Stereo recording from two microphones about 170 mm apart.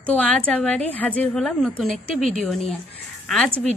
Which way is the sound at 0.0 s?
10° left (ahead or behind).